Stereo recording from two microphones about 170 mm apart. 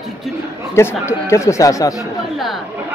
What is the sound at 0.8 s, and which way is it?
Speech, 15° left (ahead or behind).